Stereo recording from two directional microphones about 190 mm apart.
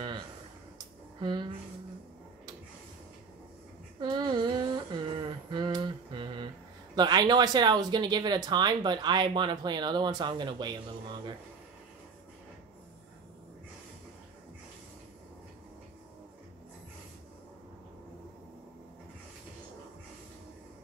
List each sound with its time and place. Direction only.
0.7 s a sound: 25° right (ahead or behind)
4.0 s humming: 25° right (ahead or behind)
7.0 s speech: 20° right (ahead or behind)